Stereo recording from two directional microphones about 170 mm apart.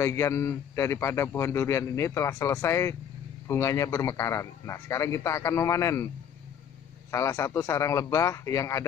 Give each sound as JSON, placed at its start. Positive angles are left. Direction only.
{"t": 0.0, "sound": "a man's voice", "side_deg": 15}
{"t": 7.1, "sound": "a man's voice", "side_deg": 20}